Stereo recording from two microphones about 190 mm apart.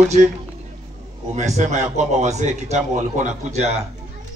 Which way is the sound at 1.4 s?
35° right (ahead or behind).